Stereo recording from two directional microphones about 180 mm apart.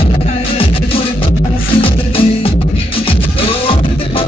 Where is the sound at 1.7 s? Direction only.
30° left (ahead or behind).